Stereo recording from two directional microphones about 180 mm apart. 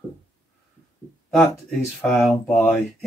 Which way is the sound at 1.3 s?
Centre (ahead or behind).